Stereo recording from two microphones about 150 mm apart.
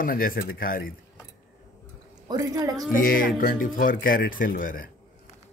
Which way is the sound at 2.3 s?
25° right (ahead or behind).